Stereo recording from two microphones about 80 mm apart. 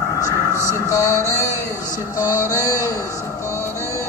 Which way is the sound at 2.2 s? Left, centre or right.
Left.